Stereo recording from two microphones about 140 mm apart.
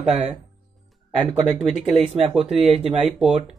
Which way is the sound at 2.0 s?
45° right (ahead or behind).